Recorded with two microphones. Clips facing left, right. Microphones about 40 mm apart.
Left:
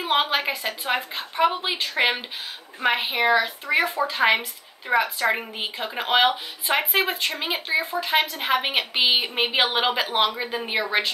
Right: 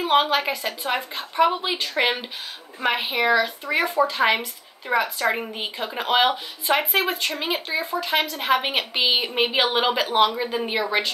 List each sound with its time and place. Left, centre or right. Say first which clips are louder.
0.0 s a woman's voice: right 3 dB; centre